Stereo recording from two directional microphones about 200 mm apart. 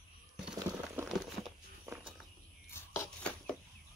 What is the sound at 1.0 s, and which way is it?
Crumpling, 10° right (ahead or behind).